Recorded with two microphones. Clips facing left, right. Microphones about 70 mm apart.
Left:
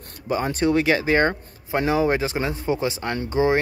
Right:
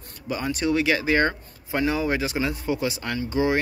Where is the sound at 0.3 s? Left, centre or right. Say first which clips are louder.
Left 3 dB; left.